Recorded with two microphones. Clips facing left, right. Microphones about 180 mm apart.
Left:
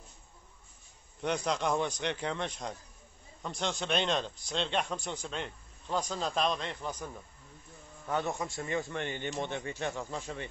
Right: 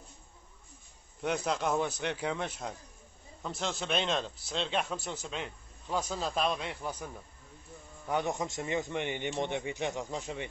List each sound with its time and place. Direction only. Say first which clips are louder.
1.2 s speech: even; 5° right (ahead or behind)
8.1 s a man's voice: right 1 dB; 15° right (ahead or behind)